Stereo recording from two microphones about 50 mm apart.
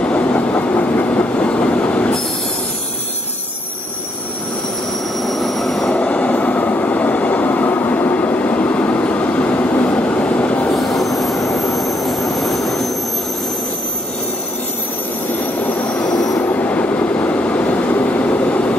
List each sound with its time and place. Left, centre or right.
0.0 s train: left
5.2 s train wheels squealing: centre
5.9 s train: left
10.7 s train wheels squealing: centre
12.0 s jet engine: centre
16.0 s train wheels squealing: centre
16.3 s train: left